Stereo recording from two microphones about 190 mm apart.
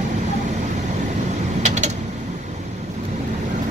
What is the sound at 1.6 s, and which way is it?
Mechanisms, 40° right (ahead or behind).